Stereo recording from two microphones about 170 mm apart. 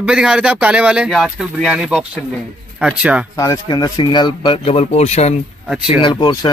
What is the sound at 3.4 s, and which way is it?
A man's voice, 20° left (ahead or behind).